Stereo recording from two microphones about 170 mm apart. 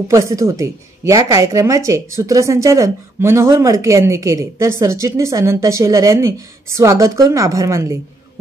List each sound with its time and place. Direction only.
0.1 s a woman's voice: 20° right (ahead or behind)